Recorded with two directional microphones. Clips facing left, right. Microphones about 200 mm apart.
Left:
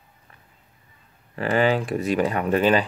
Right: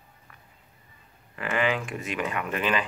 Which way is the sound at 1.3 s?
35° left (ahead or behind).